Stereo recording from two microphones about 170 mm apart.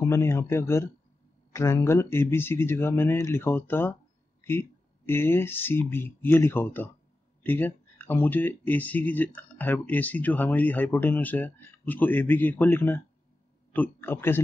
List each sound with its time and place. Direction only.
0.0 s speech: 15° left (ahead or behind)